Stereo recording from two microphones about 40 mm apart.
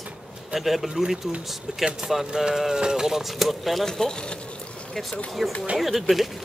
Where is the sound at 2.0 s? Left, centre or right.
Right.